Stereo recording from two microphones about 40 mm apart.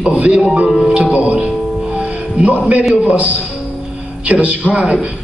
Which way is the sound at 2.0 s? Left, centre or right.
Right.